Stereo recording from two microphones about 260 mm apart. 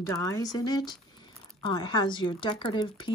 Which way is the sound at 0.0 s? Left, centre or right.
Centre.